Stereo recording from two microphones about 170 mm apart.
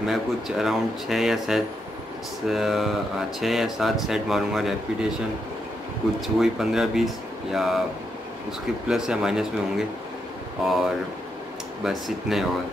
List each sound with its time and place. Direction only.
0.1 s speech: centre (ahead or behind)
6.2 s speech: centre (ahead or behind)
8.8 s speech: 5° right (ahead or behind)